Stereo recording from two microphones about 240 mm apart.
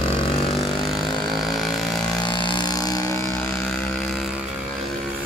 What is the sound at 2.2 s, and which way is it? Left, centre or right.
Vehicle, centre.